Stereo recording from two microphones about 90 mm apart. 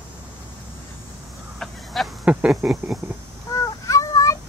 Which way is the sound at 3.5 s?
40° left (ahead or behind).